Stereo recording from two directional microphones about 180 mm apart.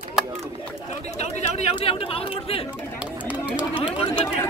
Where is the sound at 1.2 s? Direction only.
40° left (ahead or behind).